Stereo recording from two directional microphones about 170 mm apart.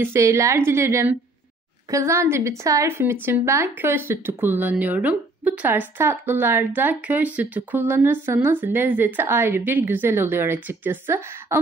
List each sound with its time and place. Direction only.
0.0 s a woman's voice: 15° right (ahead or behind)